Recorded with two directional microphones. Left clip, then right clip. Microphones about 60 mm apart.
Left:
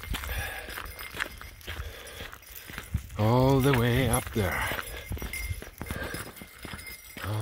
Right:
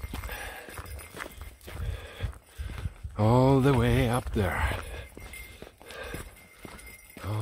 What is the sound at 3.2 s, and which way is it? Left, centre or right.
Speech, right.